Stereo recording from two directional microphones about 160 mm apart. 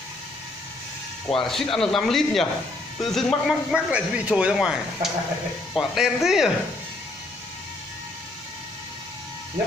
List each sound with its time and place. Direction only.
1.3 s speech: centre (ahead or behind)